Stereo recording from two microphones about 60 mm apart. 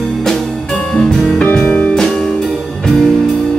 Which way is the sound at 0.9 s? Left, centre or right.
Centre.